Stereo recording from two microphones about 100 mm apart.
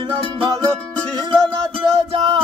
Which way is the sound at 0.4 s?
50° right (ahead or behind).